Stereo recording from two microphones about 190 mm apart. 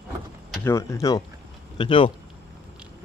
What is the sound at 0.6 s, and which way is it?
Speech, 15° left (ahead or behind).